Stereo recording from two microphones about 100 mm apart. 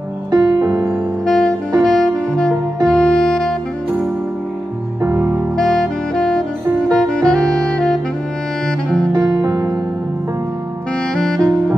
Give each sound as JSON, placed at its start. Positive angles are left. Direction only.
{"t": 0.3, "sound": "music", "side_deg": -45}
{"t": 0.7, "sound": "music", "side_deg": -30}
{"t": 1.2, "sound": "saxophone", "side_deg": 5}
{"t": 5.0, "sound": "music", "side_deg": -20}
{"t": 5.6, "sound": "saxophone", "side_deg": 5}
{"t": 9.1, "sound": "music", "side_deg": -45}
{"t": 11.1, "sound": "saxophone", "side_deg": 5}